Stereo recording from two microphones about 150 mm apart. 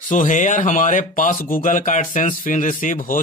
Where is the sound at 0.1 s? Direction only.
55° left (ahead or behind).